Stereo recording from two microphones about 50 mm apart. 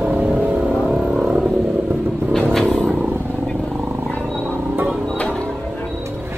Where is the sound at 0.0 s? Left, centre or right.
Right.